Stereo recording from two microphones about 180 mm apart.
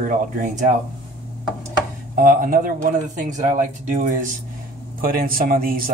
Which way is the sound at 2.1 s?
50° right (ahead or behind).